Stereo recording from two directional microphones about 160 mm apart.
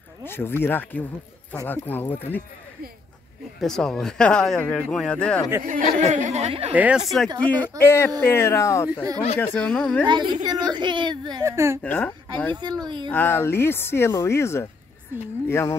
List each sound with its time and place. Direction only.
0.2 s speech: 15° left (ahead or behind)
3.6 s speech: 5° left (ahead or behind)
5.7 s speech: 55° right (ahead or behind)
6.7 s speech: 10° right (ahead or behind)
10.0 s a woman's voice: 30° right (ahead or behind)
11.8 s speech: 10° left (ahead or behind)
12.5 s a woman's voice: 25° right (ahead or behind)
13.1 s speech: 15° left (ahead or behind)